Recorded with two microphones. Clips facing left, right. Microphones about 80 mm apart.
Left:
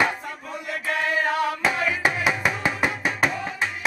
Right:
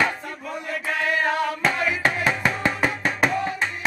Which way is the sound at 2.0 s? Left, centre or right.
Centre.